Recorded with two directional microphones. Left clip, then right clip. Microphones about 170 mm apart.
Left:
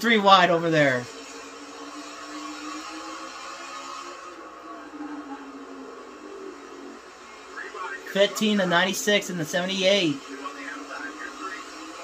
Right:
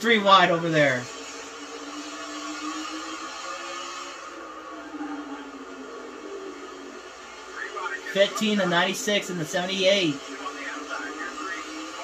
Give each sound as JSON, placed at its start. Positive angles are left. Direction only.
{"t": 0.0, "sound": "speech", "side_deg": 90}
{"t": 8.1, "sound": "speech", "side_deg": 90}